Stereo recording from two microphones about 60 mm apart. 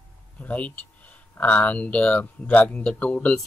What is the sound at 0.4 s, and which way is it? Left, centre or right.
Speech, left.